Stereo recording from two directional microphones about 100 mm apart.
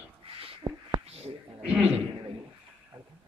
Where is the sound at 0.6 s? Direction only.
50° right (ahead or behind).